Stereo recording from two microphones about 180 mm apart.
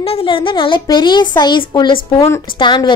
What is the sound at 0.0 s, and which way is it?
A woman's voice, 30° left (ahead or behind).